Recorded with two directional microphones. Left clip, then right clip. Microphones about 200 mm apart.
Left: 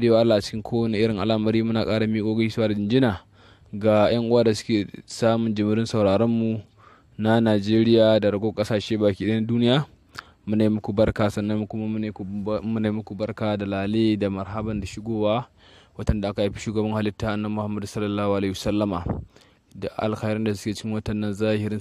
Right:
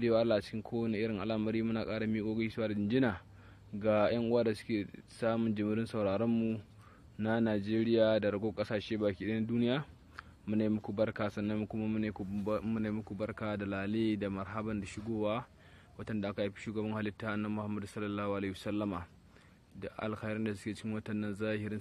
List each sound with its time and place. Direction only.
0.0 s speech: 50° left (ahead or behind)